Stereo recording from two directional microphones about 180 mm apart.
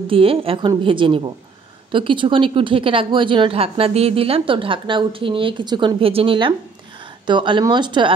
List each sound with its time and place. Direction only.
0.1 s a woman's voice: 30° right (ahead or behind)